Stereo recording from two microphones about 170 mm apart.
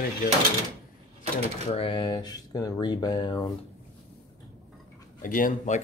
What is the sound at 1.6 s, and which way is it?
Speech, 35° left (ahead or behind).